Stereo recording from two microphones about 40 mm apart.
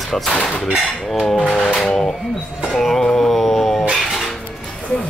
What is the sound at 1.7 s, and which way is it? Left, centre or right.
Speech, centre.